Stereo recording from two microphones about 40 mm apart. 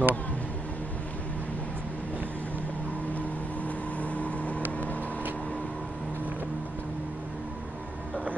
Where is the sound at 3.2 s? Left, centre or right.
Left.